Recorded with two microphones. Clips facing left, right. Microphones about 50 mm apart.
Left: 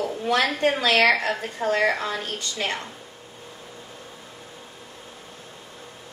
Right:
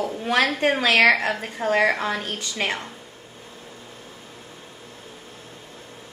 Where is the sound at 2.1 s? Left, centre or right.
Right.